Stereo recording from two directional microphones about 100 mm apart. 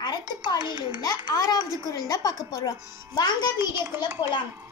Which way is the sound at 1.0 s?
40° left (ahead or behind).